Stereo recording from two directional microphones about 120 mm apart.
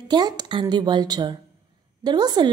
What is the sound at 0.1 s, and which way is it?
A woman's voice, 35° right (ahead or behind).